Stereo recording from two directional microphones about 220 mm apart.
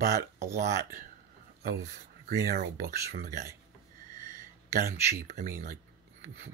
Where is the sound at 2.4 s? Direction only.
40° right (ahead or behind).